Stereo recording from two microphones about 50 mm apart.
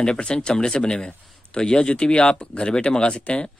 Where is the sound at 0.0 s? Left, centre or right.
Centre.